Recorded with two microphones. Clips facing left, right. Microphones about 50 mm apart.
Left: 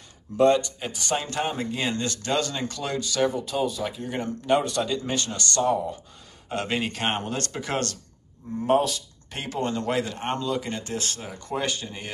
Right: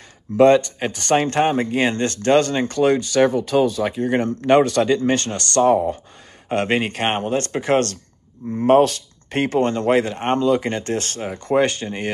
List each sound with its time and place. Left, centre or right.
0.4 s speech: right
3.3 s speech: right
8.5 s speech: right